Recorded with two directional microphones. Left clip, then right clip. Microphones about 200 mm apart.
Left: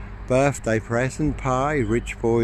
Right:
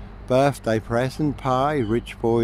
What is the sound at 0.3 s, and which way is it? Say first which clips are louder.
Speech: right 1 dB; 5° right (ahead or behind).